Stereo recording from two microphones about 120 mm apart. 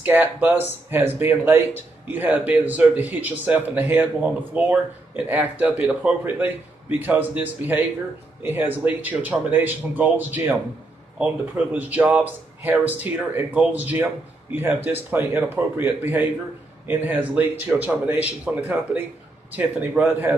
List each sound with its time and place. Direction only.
0.0 s speech: 15° right (ahead or behind)